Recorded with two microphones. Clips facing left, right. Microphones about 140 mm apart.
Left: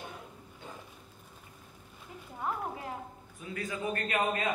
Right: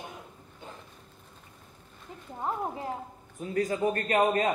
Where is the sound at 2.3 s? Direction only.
25° right (ahead or behind).